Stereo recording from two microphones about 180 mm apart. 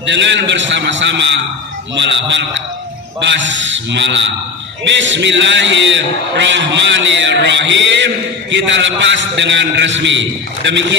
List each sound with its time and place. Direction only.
0.0 s a man's voice: 85° right